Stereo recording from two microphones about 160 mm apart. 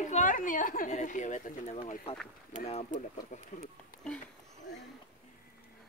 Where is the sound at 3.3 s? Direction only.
50° left (ahead or behind).